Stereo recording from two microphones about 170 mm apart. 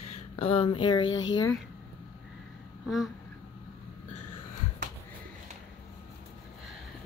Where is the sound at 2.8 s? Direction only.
Centre (ahead or behind).